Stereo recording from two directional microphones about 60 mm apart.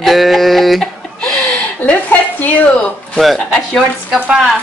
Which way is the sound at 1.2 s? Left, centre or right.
Centre.